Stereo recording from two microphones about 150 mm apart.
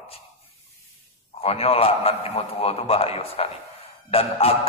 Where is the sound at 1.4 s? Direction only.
40° left (ahead or behind).